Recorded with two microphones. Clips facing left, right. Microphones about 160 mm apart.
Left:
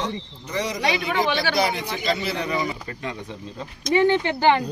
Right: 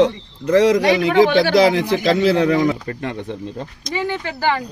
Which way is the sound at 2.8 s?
55° right (ahead or behind).